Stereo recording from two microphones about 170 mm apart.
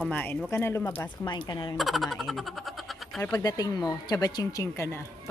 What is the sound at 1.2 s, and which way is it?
Speech, 30° left (ahead or behind).